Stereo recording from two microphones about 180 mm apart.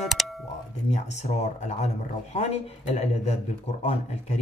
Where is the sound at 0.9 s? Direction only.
40° left (ahead or behind).